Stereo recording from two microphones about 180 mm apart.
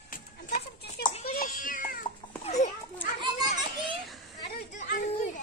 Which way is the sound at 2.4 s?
40° left (ahead or behind).